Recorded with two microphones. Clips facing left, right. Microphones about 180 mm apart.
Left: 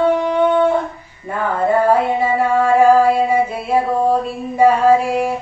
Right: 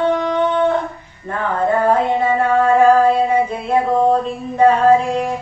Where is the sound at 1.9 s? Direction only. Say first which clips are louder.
Even; 10° left (ahead or behind).